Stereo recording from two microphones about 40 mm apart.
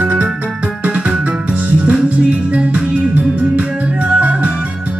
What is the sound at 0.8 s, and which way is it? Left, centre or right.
Music, right.